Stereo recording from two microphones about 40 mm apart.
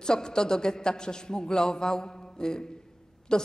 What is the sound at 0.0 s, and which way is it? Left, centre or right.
A woman's voice, centre.